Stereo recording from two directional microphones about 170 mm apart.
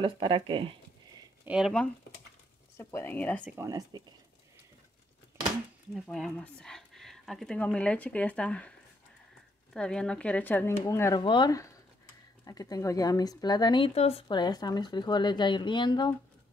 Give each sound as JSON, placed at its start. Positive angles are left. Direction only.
{"t": 0.0, "sound": "speech", "side_deg": -30}
{"t": 1.4, "sound": "speech", "side_deg": -5}
{"t": 2.8, "sound": "speech", "side_deg": 10}
{"t": 3.4, "sound": "speech", "side_deg": -20}
{"t": 5.9, "sound": "speech", "side_deg": 0}
{"t": 9.8, "sound": "speech", "side_deg": 5}